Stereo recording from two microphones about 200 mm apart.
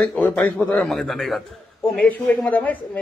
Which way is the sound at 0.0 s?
5° left (ahead or behind).